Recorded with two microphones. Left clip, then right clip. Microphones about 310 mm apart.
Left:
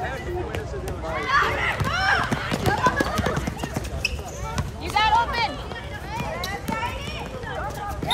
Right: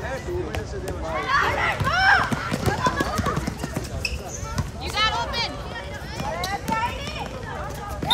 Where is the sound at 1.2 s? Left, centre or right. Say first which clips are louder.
Even; centre.